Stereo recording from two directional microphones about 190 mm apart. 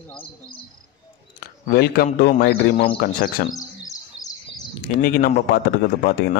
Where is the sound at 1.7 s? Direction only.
55° left (ahead or behind).